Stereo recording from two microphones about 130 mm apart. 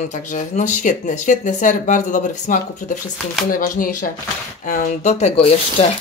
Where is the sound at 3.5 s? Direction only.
90° left.